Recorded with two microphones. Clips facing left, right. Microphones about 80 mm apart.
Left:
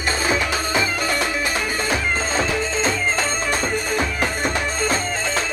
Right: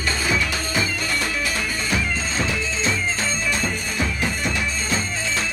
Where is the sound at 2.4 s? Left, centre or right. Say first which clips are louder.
Left 3 dB; left.